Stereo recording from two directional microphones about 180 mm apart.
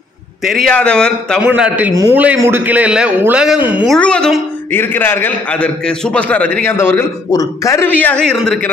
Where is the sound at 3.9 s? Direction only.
5° left (ahead or behind).